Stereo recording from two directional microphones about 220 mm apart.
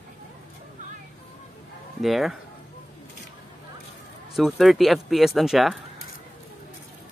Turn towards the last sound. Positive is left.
turn(degrees=0)  # may be behind; listen again after turning